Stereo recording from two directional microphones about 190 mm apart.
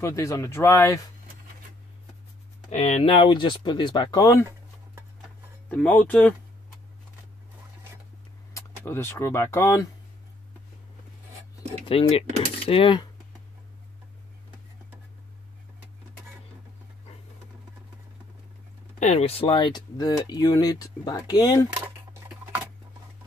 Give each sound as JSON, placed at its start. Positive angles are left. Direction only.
{"t": 0.0, "sound": "speech", "side_deg": 15}
{"t": 2.7, "sound": "speech", "side_deg": 35}
{"t": 5.7, "sound": "speech", "side_deg": 5}
{"t": 8.5, "sound": "speech", "side_deg": 15}
{"t": 11.8, "sound": "speech", "side_deg": 30}
{"t": 18.9, "sound": "speech", "side_deg": 35}
{"t": 21.8, "sound": "a sound", "side_deg": -10}